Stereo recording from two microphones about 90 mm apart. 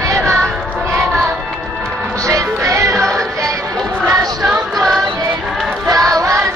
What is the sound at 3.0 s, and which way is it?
Music, 5° left (ahead or behind).